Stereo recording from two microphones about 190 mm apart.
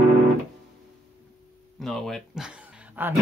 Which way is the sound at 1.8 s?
5° left (ahead or behind).